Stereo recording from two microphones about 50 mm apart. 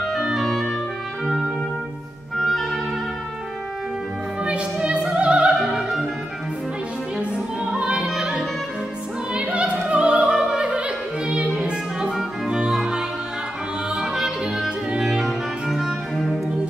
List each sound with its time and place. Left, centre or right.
0.2 s clarinet: centre
1.2 s music: centre
2.3 s music: centre
4.4 s opera: right
5.5 s music: centre
7.3 s opera: centre
8.1 s music: centre
9.3 s opera: centre
12.1 s music: centre
12.5 s music: centre
15.2 s music: centre